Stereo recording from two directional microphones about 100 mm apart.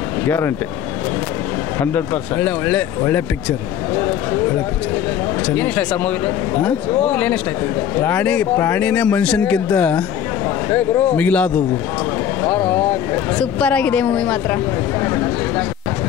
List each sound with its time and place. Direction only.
1.8 s speech: 20° left (ahead or behind)
5.5 s a woman's voice: 15° left (ahead or behind)